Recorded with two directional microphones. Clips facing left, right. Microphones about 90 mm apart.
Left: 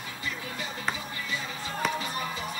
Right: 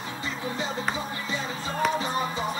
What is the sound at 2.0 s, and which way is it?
Music, 30° right (ahead or behind).